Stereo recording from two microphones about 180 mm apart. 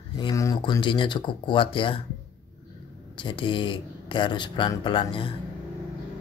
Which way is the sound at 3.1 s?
25° left (ahead or behind).